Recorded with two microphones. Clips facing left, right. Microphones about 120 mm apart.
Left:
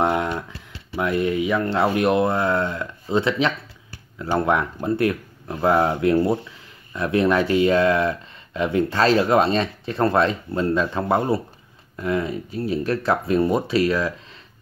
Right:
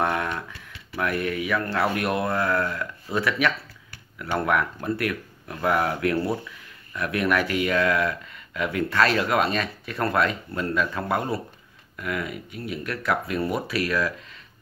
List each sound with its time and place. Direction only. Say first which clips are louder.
0.0 s speech: left 4 dB; 20° left (ahead or behind)